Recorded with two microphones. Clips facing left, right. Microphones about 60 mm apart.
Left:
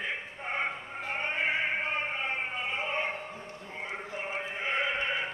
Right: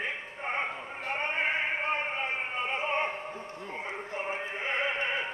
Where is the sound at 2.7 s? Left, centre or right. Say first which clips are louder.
Right 3 dB; right.